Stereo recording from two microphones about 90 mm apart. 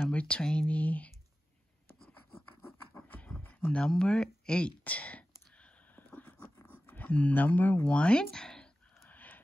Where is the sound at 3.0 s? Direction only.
15° left (ahead or behind).